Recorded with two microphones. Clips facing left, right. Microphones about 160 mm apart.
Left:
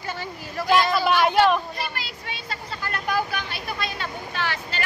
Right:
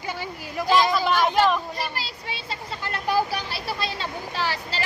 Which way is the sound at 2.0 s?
30° right (ahead or behind).